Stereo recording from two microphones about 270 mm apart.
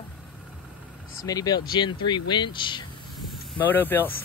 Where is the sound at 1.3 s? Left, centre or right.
Centre.